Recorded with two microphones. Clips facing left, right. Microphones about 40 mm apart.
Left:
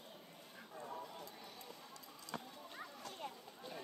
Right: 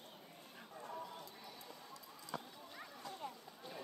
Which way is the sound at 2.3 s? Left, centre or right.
Left.